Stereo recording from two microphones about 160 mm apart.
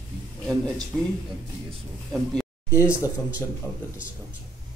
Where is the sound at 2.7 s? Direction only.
20° left (ahead or behind).